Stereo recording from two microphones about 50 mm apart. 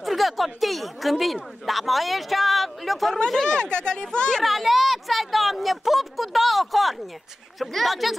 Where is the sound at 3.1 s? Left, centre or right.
Centre.